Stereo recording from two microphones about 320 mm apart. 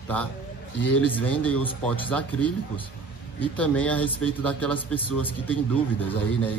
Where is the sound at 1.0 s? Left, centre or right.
Centre.